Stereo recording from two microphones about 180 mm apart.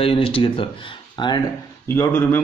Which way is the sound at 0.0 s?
30° left (ahead or behind).